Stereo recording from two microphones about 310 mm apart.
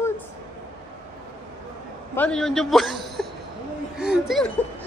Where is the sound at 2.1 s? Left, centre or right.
Centre.